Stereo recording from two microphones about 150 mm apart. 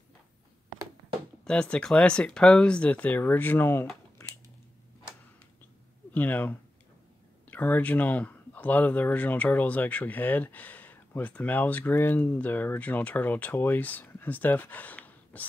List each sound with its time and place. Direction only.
1.4 s speech: 5° left (ahead or behind)
6.1 s speech: 10° left (ahead or behind)